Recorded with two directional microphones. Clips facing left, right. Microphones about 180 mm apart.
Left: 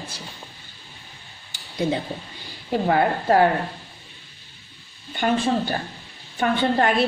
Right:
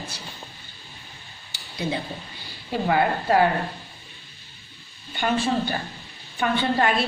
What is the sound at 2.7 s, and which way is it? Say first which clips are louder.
Speech: left 2 dB; 40° left (ahead or behind).